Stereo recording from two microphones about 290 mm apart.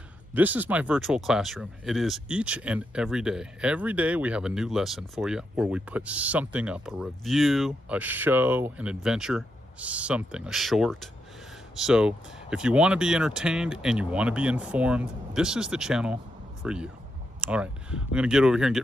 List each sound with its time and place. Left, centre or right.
0.3 s speech: centre